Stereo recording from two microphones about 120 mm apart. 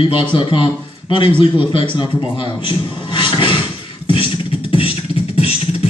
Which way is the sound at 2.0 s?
40° left (ahead or behind).